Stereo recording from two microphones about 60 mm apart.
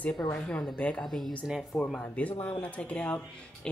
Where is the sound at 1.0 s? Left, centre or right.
Centre.